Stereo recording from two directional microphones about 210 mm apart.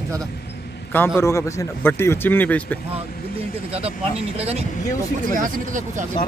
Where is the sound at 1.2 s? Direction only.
15° left (ahead or behind).